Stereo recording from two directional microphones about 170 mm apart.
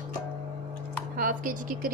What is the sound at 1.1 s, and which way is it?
Speech, 55° right (ahead or behind).